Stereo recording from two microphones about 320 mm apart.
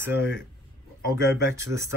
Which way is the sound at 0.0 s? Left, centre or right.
Centre.